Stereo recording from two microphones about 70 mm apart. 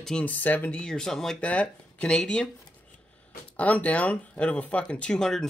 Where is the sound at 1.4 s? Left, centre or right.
Centre.